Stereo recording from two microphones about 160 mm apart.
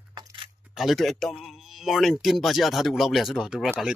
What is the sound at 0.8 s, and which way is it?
Speech, centre (ahead or behind).